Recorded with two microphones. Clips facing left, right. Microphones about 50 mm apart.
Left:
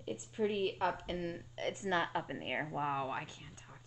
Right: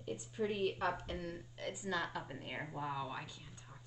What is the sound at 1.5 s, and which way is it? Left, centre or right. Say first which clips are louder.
A woman's voice: left 5 dB; left.